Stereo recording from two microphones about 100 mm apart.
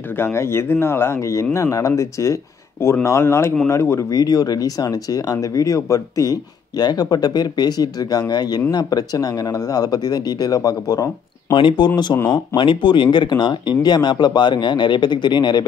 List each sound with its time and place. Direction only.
0.2 s speech: 25° left (ahead or behind)
11.5 s speech: 55° left (ahead or behind)